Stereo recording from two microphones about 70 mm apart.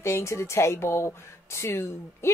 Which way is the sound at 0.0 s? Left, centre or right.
Left.